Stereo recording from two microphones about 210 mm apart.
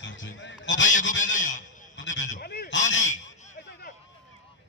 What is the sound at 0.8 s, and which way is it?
Speech, 35° left (ahead or behind).